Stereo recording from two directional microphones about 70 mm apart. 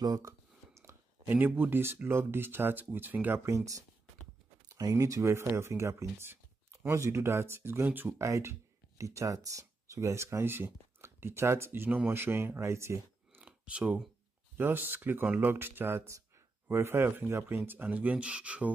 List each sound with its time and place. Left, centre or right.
0.0 s speech: right
0.7 s a sound: right
1.3 s speech: right
3.4 s speech: right
8.2 s speech: right
13.4 s a sound: centre
14.6 s speech: right